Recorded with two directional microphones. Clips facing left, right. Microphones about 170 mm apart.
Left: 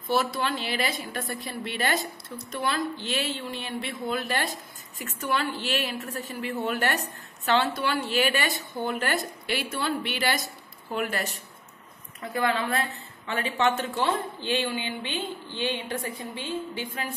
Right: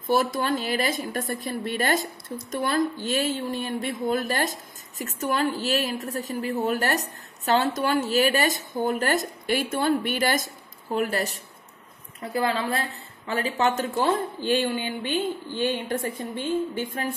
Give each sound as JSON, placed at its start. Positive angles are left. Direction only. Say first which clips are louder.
{"t": 0.1, "sound": "a woman's voice", "louder": "right 3 dB", "side_deg": -50}